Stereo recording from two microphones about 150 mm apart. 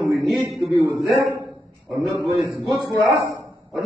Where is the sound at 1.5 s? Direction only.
20° right (ahead or behind).